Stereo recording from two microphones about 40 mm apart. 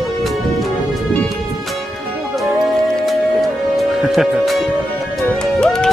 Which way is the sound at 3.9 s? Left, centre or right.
Centre.